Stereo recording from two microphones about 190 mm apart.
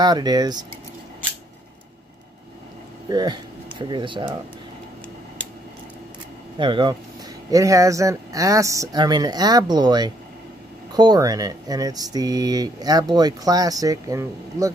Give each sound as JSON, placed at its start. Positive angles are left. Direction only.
{"t": 0.0, "sound": "speech", "side_deg": -20}
{"t": 3.1, "sound": "speech", "side_deg": -20}
{"t": 6.6, "sound": "speech", "side_deg": -25}